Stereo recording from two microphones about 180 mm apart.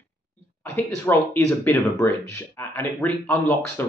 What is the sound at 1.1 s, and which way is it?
Speech, 15° left (ahead or behind).